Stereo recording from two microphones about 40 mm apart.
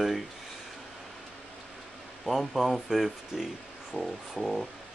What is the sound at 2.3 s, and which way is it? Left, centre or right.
Speech, centre.